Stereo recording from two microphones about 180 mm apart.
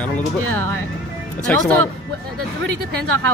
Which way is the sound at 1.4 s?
10° left (ahead or behind).